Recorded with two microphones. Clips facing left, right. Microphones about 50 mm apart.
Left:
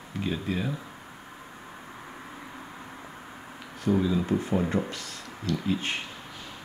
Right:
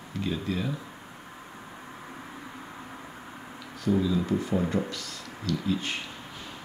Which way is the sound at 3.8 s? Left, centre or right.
Left.